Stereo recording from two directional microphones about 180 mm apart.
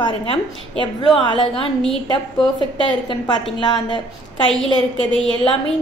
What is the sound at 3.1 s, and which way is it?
Speech, 25° left (ahead or behind).